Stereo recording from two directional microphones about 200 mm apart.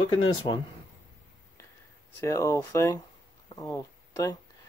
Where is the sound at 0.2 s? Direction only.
25° left (ahead or behind).